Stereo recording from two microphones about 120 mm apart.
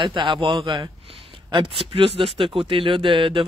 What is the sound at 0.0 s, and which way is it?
A man's voice, 40° right (ahead or behind).